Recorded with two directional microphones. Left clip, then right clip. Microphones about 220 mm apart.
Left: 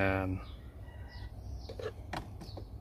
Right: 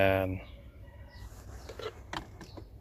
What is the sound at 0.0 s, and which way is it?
Fowl, 20° right (ahead or behind).